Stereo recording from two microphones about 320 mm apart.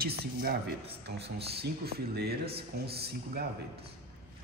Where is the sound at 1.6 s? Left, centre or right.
Right.